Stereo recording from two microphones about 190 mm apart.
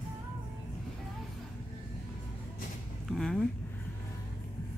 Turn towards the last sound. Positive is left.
turn(degrees=0)  # may be behind; listen again after turning